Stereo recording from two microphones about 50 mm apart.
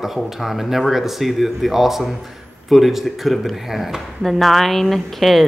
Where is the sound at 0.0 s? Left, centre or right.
Centre.